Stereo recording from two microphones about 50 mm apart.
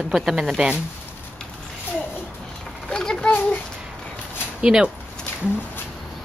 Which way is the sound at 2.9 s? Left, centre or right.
Centre.